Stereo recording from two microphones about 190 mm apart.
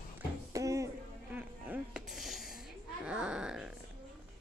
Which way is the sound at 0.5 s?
15° right (ahead or behind).